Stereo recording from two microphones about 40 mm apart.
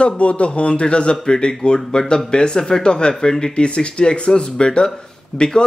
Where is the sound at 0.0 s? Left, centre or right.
Left.